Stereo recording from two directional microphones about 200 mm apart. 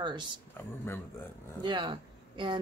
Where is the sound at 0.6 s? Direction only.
10° left (ahead or behind).